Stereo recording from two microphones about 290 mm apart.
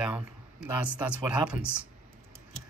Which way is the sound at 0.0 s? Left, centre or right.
Centre.